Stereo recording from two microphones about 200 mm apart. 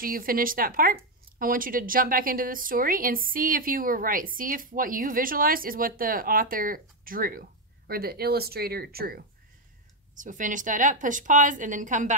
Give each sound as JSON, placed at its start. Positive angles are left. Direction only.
{"t": 0.0, "sound": "a woman's voice", "side_deg": -45}